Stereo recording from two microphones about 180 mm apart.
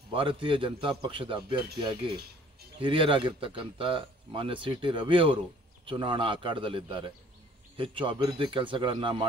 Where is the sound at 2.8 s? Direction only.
30° right (ahead or behind).